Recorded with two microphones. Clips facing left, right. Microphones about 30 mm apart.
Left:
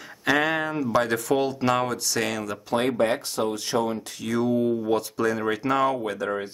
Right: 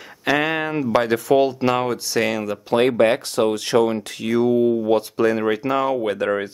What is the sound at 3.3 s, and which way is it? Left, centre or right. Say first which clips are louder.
Speech: right 7 dB; right.